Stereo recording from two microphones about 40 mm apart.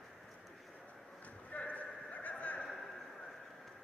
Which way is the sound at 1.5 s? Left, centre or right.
Left.